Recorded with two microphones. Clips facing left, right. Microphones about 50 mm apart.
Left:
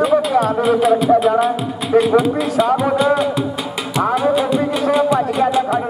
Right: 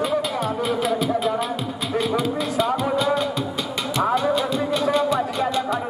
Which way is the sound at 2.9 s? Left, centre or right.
Centre.